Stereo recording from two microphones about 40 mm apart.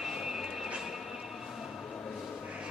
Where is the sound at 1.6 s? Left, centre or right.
Centre.